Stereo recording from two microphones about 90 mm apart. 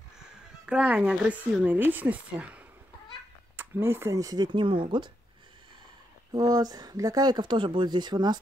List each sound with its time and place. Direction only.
0.7 s speech: 10° right (ahead or behind)
3.7 s speech: 30° right (ahead or behind)
4.5 s speech: 70° right (ahead or behind)
6.3 s speech: 45° right (ahead or behind)